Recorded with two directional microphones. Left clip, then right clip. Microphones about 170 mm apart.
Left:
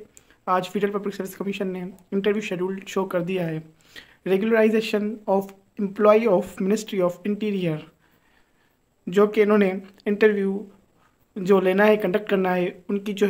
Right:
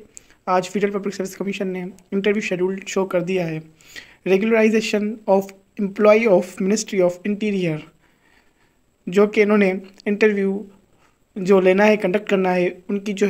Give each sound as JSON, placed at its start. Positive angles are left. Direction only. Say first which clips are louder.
{"t": 0.1, "sound": "speech", "louder": "right 3 dB", "side_deg": -5}
{"t": 9.0, "sound": "speech", "louder": "right 2 dB", "side_deg": -5}